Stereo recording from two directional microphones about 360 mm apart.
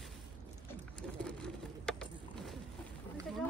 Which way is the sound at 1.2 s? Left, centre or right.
Centre.